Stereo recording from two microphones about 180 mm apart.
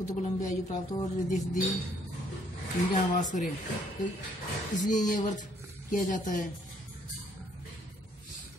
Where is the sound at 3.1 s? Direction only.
45° left (ahead or behind).